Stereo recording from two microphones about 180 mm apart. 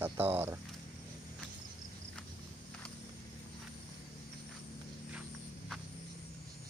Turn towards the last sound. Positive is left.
turn(degrees=-5)  # may be behind; listen again after turning